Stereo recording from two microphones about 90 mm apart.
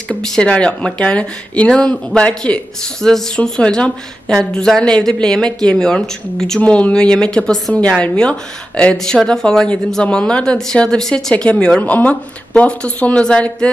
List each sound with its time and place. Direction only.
0.2 s speech: 10° left (ahead or behind)